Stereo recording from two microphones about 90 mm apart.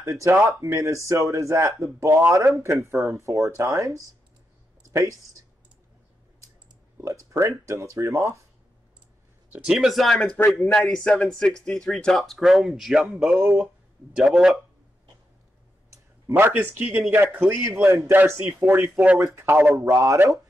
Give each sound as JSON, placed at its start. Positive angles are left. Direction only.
{"t": 0.0, "sound": "speech", "side_deg": -35}
{"t": 7.0, "sound": "speech", "side_deg": -35}
{"t": 9.5, "sound": "speech", "side_deg": -15}
{"t": 9.8, "sound": "a man's voice", "side_deg": 0}
{"t": 14.1, "sound": "a man's voice", "side_deg": -5}
{"t": 15.9, "sound": "speech", "side_deg": -25}